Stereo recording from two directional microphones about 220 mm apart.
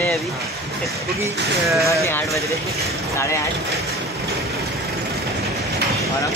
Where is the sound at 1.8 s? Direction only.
10° left (ahead or behind).